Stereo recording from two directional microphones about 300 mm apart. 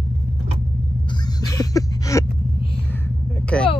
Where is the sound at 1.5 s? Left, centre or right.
Centre.